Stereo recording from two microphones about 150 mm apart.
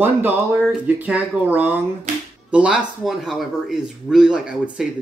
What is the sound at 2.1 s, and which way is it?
Speech, 60° right (ahead or behind).